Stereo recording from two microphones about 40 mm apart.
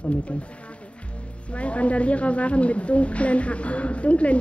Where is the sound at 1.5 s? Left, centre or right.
Left.